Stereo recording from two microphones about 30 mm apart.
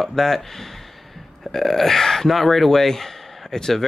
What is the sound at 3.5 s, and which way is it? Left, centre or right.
Speech, left.